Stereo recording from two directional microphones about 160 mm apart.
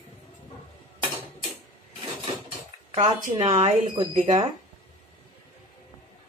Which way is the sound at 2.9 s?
45° right (ahead or behind).